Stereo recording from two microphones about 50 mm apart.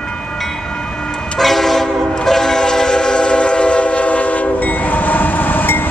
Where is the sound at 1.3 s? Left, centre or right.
Centre.